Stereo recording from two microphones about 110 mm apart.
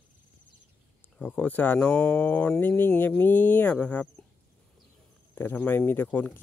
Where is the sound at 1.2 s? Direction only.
15° left (ahead or behind).